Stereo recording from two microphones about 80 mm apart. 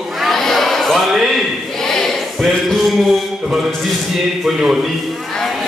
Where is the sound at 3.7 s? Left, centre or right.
Centre.